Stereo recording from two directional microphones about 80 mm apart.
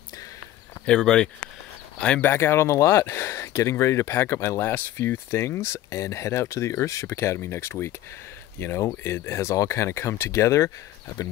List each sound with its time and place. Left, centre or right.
0.8 s speech: centre
2.2 s speech: left